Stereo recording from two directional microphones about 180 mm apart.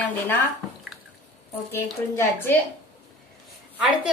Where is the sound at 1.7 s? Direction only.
10° left (ahead or behind).